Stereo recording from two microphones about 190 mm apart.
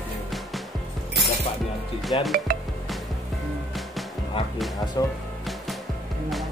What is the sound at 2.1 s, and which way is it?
Speech, 25° left (ahead or behind).